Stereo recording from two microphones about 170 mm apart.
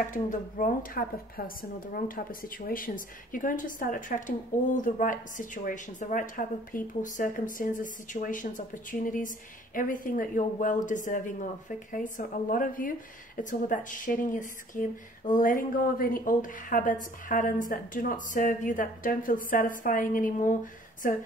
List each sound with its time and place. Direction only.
0.1 s a woman's voice: 50° left (ahead or behind)